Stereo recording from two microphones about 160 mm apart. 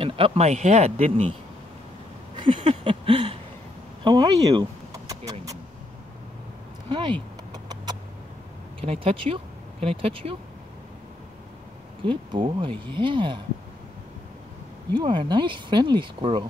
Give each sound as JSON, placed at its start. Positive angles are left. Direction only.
{"t": 0.0, "sound": "speech", "side_deg": -35}
{"t": 2.3, "sound": "a sound", "side_deg": -30}
{"t": 4.0, "sound": "vehicle", "side_deg": -25}
{"t": 6.9, "sound": "a sound", "side_deg": -30}
{"t": 8.8, "sound": "speech", "side_deg": -35}
{"t": 12.1, "sound": "speech", "side_deg": -30}
{"t": 15.0, "sound": "speech", "side_deg": -30}